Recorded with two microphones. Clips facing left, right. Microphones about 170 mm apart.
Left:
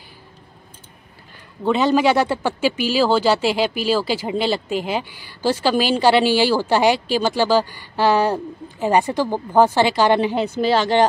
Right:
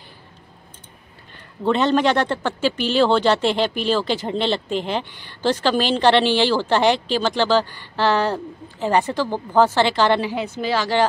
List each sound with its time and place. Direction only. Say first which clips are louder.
1.6 s speech: left 1 dB; 5° left (ahead or behind)
10.3 s speech: left 5 dB; 30° left (ahead or behind)